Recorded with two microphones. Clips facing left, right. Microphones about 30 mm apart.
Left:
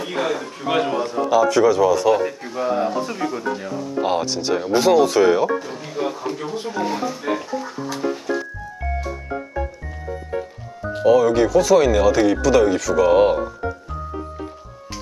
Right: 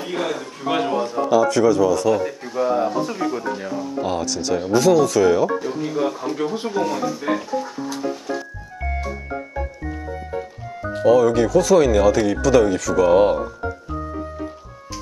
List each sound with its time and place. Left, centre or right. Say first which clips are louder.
0.0 s a man's voice: left 2 dB; centre
4.0 s speech: left 4 dB; left
5.6 s a man's voice: right 4 dB; centre
6.3 s speech: right 3 dB; centre
6.8 s speech: right 1 dB; left
7.2 s speech: right 1 dB; centre
10.9 s a man's voice: even; centre